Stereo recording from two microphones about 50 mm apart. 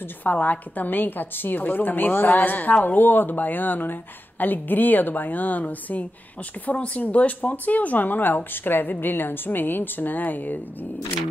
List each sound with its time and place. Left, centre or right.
0.2 s a woman's voice: left